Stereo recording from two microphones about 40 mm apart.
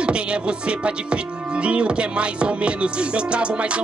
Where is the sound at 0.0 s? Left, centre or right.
Right.